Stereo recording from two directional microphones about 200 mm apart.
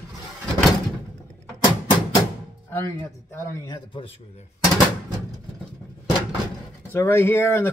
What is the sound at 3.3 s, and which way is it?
Speech, 15° left (ahead or behind).